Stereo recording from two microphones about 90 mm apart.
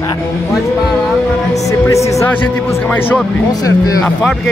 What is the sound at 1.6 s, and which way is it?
Speech, 35° left (ahead or behind).